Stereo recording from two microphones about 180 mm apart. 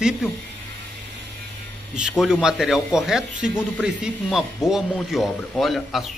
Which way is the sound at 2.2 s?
5° right (ahead or behind).